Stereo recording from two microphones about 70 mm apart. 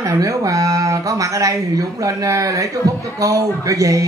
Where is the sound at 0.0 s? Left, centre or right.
Right.